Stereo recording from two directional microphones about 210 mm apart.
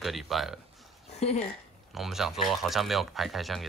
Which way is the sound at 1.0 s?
30° left (ahead or behind).